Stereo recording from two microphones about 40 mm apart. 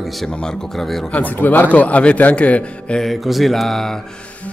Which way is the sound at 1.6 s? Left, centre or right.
Left.